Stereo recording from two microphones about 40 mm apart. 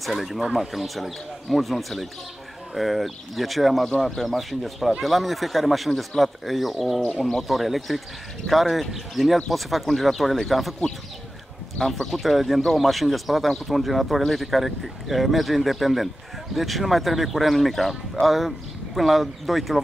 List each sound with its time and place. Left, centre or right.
0.0 s speech: centre
11.8 s speech: centre